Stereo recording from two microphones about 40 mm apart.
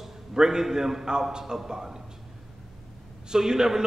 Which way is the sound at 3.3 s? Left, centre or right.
Centre.